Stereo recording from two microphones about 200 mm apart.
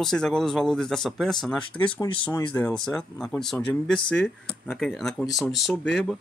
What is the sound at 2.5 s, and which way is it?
Speech, 5° left (ahead or behind).